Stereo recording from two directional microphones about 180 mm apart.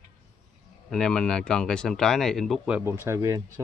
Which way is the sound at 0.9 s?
5° left (ahead or behind).